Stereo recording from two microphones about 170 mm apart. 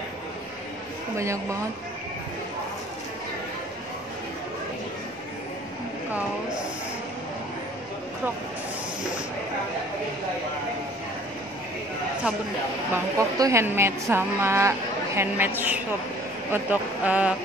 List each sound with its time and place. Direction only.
1.1 s speech: 15° right (ahead or behind)
12.9 s speech: 15° right (ahead or behind)